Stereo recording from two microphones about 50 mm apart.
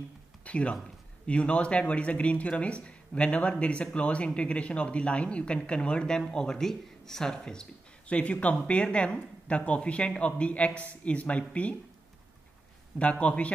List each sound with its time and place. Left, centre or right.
0.5 s speech: left
8.1 s speech: left
13.0 s speech: left